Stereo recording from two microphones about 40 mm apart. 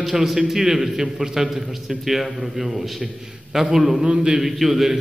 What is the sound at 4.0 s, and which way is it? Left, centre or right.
Speech, centre.